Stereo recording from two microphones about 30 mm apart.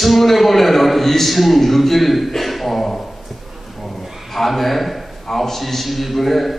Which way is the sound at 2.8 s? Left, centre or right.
Centre.